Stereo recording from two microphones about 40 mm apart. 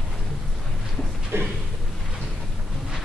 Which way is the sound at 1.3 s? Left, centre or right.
Right.